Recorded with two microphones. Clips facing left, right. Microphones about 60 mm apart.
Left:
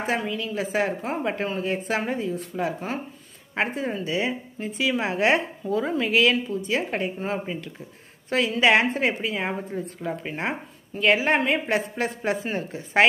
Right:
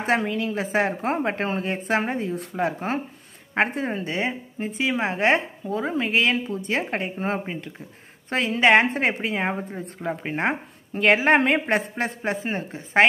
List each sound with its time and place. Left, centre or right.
0.0 s a woman's voice: right
4.6 s a woman's voice: right
12.3 s speech: right